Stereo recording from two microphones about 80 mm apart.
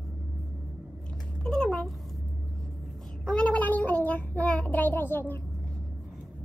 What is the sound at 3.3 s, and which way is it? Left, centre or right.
Child singing, centre.